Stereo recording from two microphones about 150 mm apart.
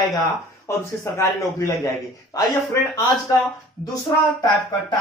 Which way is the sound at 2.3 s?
25° left (ahead or behind).